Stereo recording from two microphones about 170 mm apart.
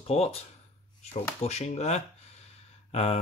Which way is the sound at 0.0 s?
35° left (ahead or behind).